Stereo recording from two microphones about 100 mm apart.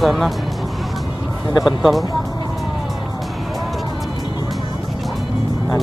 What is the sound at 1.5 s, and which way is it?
Speech, 5° right (ahead or behind).